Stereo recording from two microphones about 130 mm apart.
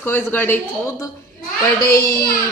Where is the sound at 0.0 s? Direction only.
15° left (ahead or behind).